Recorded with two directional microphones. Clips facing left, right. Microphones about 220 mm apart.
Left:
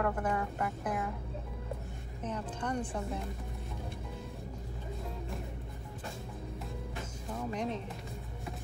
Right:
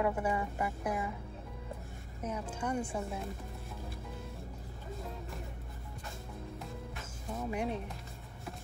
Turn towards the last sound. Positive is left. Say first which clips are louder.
# even
turn(degrees=-10)  # may be behind; listen again after turning